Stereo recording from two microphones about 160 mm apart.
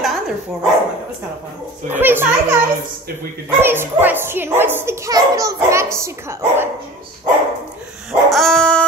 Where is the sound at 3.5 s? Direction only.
15° right (ahead or behind).